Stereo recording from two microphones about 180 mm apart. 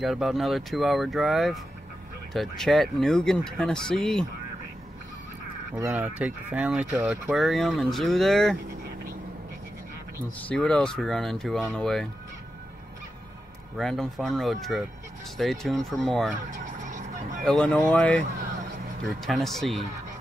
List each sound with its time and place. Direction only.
0.0 s speech: centre (ahead or behind)
5.9 s speech: 5° right (ahead or behind)
10.5 s speech: 5° left (ahead or behind)
13.7 s speech: centre (ahead or behind)
16.4 s vehicle: 40° right (ahead or behind)
17.5 s speech: 5° left (ahead or behind)
19.2 s speech: centre (ahead or behind)